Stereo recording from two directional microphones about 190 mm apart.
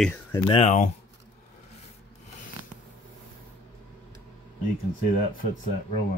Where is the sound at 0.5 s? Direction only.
35° left (ahead or behind).